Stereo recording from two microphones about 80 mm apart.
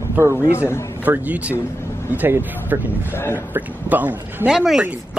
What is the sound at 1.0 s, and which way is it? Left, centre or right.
A man's voice, right.